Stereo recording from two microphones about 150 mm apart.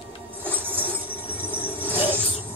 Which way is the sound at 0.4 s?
15° right (ahead or behind).